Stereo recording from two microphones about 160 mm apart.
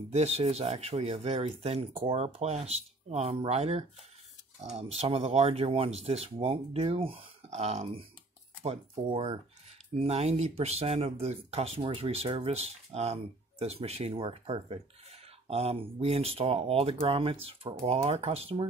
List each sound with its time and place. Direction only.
0.1 s speech: 40° right (ahead or behind)